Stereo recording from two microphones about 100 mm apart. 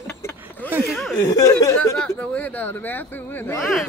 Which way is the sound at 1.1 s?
35° left (ahead or behind).